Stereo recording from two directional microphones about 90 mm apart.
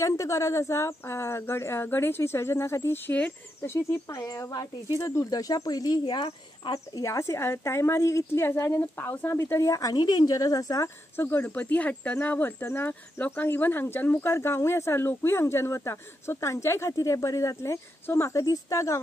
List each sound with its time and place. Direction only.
0.0 s speech: 35° left (ahead or behind)
3.1 s speech: 20° left (ahead or behind)
3.7 s a woman's voice: 35° left (ahead or behind); by 6.7 s 65° left (ahead or behind)
6.7 s a woman's voice: 35° left (ahead or behind); by 9.3 s 20° left (ahead or behind)
9.3 s a woman's voice: 30° left (ahead or behind)
9.9 s speech: 50° left (ahead or behind)
11.1 s a woman's voice: 25° left (ahead or behind)